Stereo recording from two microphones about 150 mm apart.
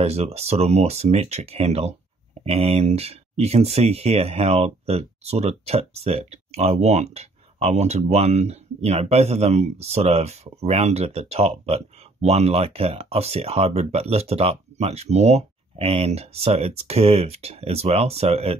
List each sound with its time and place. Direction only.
0.0 s speech: 45° right (ahead or behind)